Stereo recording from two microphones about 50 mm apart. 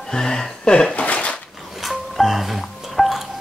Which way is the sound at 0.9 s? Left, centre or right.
Left.